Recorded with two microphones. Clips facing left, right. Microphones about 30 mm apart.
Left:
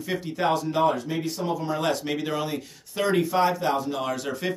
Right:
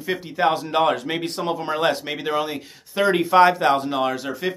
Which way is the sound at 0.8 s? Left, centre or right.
Right.